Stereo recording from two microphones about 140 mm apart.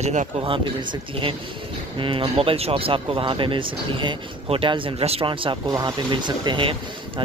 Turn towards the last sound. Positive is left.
turn(degrees=-35)  # may be behind; listen again after turning